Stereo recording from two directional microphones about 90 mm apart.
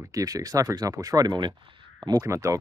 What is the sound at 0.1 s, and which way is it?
Speech, 40° right (ahead or behind).